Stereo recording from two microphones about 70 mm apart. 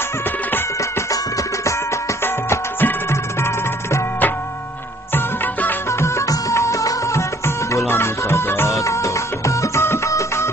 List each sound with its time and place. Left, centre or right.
0.7 s music: left
2.2 s music: left
5.9 s music: left
8.8 s music: left